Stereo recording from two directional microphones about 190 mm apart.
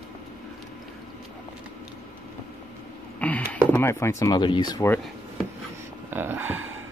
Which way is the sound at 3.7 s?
15° left (ahead or behind).